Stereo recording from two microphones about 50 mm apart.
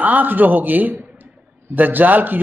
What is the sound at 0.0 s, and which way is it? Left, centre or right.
A man's voice, right.